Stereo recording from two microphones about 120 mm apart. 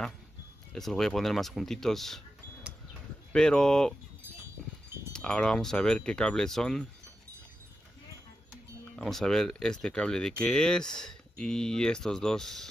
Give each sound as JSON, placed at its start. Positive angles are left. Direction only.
{"t": 0.7, "sound": "speech", "side_deg": 5}
{"t": 3.3, "sound": "speech", "side_deg": 5}
{"t": 5.1, "sound": "speech", "side_deg": 10}
{"t": 8.9, "sound": "speech", "side_deg": 5}